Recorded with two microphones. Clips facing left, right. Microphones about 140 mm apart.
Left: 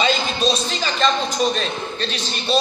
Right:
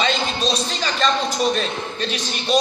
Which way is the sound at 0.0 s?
5° left (ahead or behind).